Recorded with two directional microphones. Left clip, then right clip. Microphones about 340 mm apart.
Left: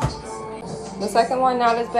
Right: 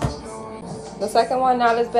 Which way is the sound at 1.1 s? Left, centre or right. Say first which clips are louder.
Even; centre.